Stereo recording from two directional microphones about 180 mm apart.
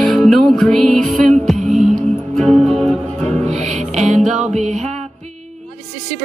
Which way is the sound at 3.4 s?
40° right (ahead or behind).